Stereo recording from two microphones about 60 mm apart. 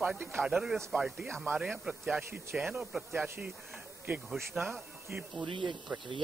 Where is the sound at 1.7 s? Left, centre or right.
Centre.